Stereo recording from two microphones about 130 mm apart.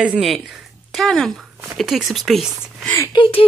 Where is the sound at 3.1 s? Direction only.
40° left (ahead or behind).